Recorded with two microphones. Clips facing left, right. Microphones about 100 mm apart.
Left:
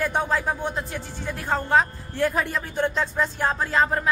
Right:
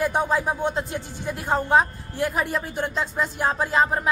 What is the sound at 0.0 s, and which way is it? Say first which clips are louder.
Speech: right 2 dB; 15° right (ahead or behind).